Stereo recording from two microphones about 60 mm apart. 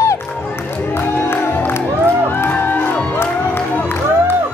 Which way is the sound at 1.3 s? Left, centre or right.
Left.